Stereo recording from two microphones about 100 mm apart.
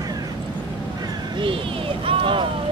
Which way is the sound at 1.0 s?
55° right (ahead or behind).